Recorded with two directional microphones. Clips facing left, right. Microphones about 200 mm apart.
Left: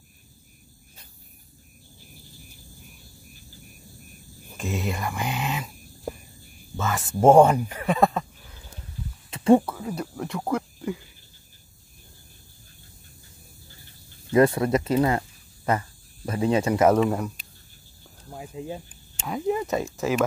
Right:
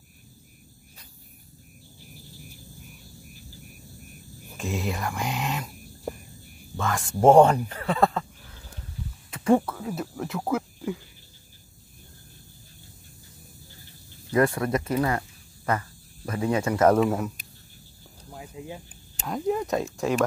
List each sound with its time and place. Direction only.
4.6 s speech: centre (ahead or behind); by 8.3 s 15° left (ahead or behind)
9.3 s a sound: 25° left (ahead or behind)
9.6 s speech: 5° left (ahead or behind)
14.3 s speech: 20° left (ahead or behind)
16.9 s speech: centre (ahead or behind)
18.3 s speech: 25° left (ahead or behind)
19.2 s speech: centre (ahead or behind)